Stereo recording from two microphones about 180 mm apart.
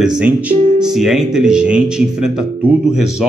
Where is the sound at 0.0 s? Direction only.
5° right (ahead or behind).